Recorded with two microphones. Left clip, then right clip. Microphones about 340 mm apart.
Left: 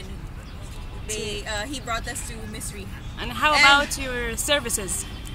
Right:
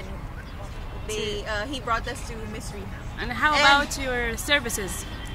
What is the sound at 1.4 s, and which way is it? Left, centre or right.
Speech, right.